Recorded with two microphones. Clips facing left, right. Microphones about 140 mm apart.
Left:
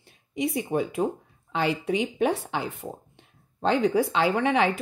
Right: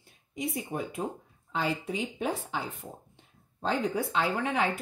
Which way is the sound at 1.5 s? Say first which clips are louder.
Left 6 dB; 75° left (ahead or behind).